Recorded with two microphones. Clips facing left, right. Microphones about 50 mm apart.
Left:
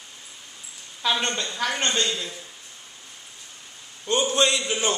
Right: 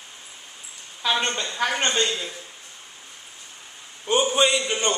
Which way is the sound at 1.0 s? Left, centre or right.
Centre.